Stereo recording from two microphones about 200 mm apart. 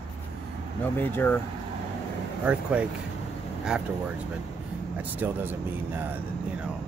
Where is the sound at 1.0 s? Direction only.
10° left (ahead or behind).